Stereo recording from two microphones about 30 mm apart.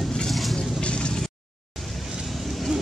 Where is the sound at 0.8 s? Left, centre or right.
Left.